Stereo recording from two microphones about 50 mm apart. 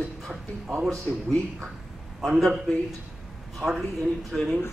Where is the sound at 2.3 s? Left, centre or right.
Centre.